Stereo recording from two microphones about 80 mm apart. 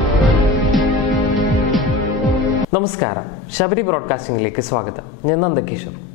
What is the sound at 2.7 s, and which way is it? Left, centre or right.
Speech, centre.